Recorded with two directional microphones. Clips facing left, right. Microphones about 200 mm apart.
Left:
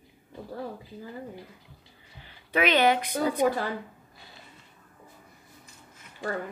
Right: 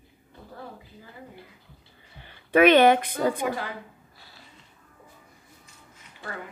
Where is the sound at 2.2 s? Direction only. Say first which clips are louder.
Right 8 dB; 55° right (ahead or behind).